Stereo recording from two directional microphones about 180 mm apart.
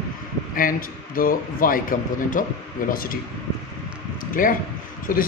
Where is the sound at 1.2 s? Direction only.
50° left (ahead or behind).